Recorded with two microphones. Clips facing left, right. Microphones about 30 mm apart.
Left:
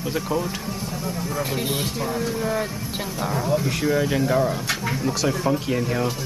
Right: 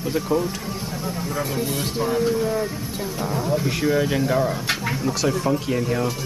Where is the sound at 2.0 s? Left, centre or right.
Centre.